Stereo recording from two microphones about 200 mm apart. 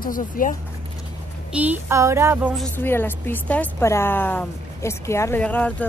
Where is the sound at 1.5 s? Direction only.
10° right (ahead or behind).